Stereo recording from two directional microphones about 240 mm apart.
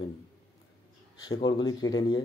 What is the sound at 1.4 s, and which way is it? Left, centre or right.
Speech, centre.